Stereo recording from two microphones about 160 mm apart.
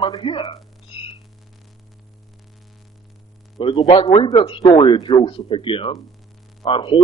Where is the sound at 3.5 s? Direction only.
30° left (ahead or behind).